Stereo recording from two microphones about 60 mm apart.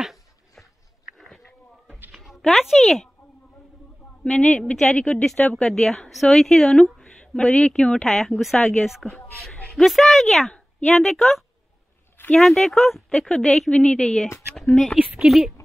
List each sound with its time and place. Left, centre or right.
0.0 s a sound: centre
2.8 s speech: centre
4.2 s a woman's voice: centre
8.5 s a woman's voice: left
9.1 s a woman's voice: centre